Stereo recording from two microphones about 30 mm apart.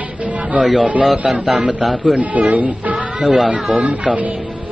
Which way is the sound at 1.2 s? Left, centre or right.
Right.